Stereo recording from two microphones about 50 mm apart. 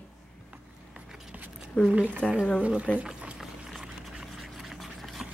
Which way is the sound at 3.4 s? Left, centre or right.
Centre.